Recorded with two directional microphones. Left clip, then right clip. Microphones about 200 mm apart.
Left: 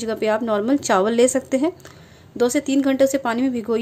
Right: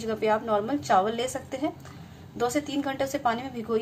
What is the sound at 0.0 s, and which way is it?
A woman's voice, 50° left (ahead or behind).